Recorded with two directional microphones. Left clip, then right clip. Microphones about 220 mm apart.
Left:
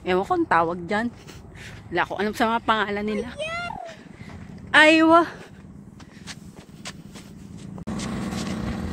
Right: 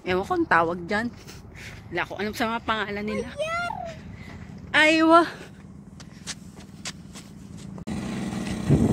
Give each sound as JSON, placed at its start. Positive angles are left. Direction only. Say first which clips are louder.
{"t": 0.0, "sound": "speech", "louder": "left 2 dB", "side_deg": 10}
{"t": 1.9, "sound": "speech", "louder": "left 5 dB", "side_deg": 20}
{"t": 3.4, "sound": "a sound", "louder": "right 4 dB", "side_deg": -30}
{"t": 4.6, "sound": "speech", "louder": "left 4 dB", "side_deg": 25}
{"t": 5.0, "sound": "speech", "louder": "left 1 dB", "side_deg": 0}
{"t": 7.8, "sound": "vehicle", "louder": "left 2 dB", "side_deg": 0}